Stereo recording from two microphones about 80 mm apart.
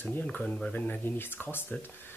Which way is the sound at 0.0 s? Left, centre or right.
Left.